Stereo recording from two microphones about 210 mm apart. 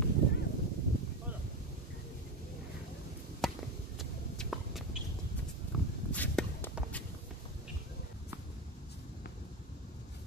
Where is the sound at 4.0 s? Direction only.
Centre (ahead or behind).